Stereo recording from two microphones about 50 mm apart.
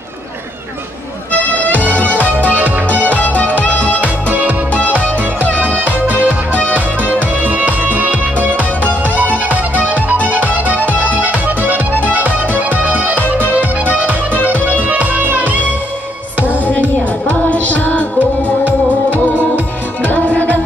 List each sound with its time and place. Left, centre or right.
1.3 s music: left
4.3 s music: right
5.9 s music: right
6.5 s music: left
7.2 s music: right
10.9 s music: left
11.1 s music: right
14.5 s music: right
17.3 s music: left
18.6 s music: right
20.0 s music: left